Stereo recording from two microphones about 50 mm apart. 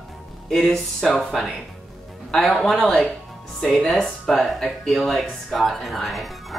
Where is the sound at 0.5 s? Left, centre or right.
Centre.